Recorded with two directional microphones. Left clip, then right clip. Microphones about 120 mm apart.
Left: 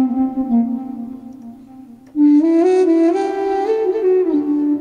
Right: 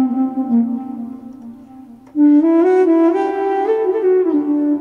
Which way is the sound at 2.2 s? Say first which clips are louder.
Right 1 dB; 40° left (ahead or behind).